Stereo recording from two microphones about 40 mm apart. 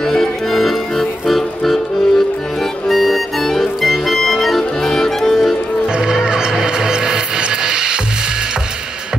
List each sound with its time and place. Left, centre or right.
0.0 s music: centre
5.9 s music: centre